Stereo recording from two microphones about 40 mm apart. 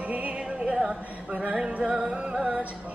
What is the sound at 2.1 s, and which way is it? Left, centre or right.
Music, right.